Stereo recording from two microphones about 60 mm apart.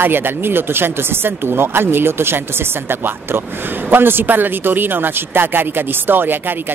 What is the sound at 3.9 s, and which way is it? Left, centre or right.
Speech, right.